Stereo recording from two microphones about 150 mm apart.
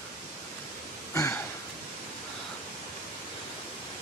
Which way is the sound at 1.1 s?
20° left (ahead or behind).